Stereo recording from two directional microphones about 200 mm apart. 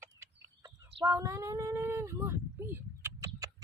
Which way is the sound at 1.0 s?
15° right (ahead or behind).